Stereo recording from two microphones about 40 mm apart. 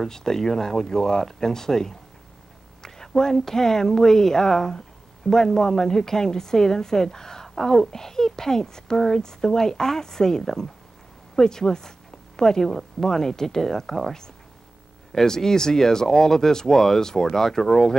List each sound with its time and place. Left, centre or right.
0.0 s a woman's voice: centre
3.2 s a woman's voice: centre